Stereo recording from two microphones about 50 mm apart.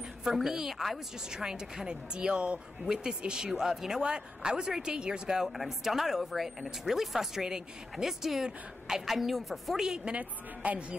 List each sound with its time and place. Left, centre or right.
0.2 s speech: centre
9.8 s speech: centre
10.1 s a woman's voice: right